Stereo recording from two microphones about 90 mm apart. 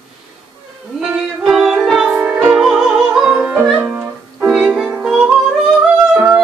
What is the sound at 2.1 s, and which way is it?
Music, 15° right (ahead or behind).